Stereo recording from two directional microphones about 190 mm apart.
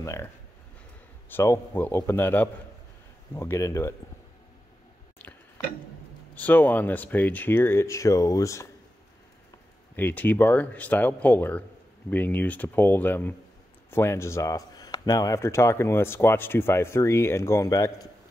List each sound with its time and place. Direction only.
0.0 s speech: 15° left (ahead or behind)
1.3 s speech: 15° left (ahead or behind)
6.3 s speech: 10° left (ahead or behind)
9.9 s speech: 10° left (ahead or behind)